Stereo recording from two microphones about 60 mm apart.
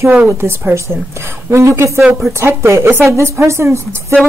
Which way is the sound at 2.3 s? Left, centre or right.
Right.